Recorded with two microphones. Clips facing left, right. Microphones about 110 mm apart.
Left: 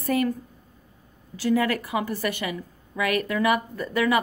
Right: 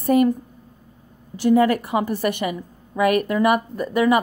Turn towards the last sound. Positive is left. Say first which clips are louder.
# right 5 dB
turn(degrees=-20)  # may be behind; listen again after turning